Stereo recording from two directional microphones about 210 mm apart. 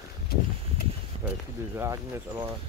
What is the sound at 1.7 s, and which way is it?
Speech, 10° right (ahead or behind).